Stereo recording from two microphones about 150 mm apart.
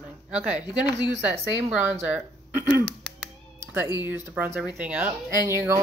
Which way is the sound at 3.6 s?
15° right (ahead or behind).